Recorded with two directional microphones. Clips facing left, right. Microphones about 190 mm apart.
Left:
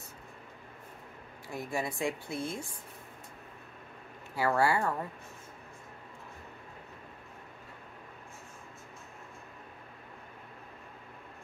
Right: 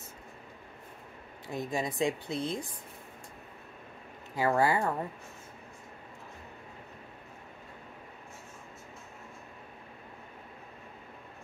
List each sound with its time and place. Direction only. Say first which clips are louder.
1.5 s speech: right 2 dB; 20° right (ahead or behind)
4.4 s speech: right 1 dB; 20° right (ahead or behind)